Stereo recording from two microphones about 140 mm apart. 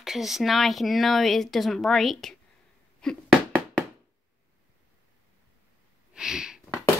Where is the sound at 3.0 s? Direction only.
5° left (ahead or behind).